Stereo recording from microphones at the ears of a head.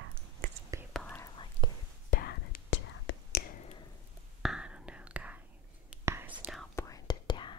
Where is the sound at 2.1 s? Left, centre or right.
Left.